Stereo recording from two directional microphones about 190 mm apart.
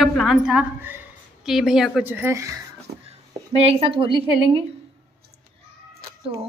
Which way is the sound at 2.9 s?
55° right (ahead or behind).